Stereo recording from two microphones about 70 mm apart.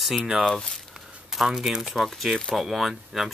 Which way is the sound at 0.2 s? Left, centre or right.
Centre.